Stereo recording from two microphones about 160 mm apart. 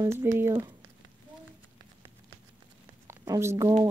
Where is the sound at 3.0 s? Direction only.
20° right (ahead or behind).